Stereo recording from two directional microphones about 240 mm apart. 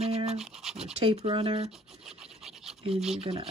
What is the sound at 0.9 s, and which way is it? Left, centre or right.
Speech, right.